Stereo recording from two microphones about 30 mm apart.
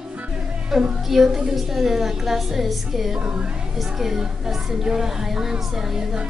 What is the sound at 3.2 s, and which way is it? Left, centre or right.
Speech, right.